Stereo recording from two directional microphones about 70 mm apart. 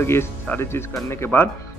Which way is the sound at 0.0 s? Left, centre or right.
Left.